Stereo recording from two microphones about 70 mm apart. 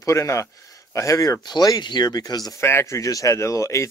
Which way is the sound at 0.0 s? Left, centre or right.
Left.